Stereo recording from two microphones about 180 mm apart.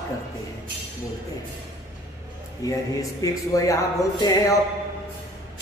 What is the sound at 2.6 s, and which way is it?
Speech, 20° left (ahead or behind).